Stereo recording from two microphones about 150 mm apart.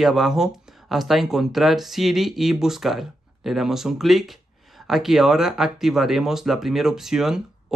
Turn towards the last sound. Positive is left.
turn(degrees=-5)  # may be behind; listen again after turning